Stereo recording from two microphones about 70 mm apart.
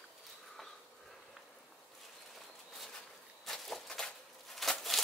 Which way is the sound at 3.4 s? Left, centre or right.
Centre.